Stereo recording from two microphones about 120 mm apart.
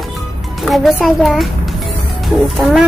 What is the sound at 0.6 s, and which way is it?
A child's voice, centre (ahead or behind).